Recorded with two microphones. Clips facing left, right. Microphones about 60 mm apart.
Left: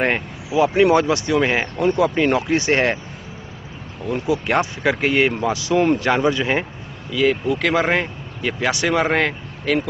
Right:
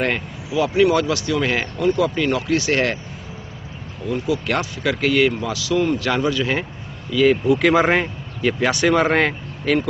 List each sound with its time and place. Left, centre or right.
0.0 s speech: left
4.1 s speech: left
7.1 s speech: centre